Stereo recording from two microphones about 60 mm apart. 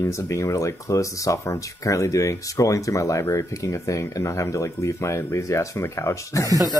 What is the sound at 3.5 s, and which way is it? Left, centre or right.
Speech, left.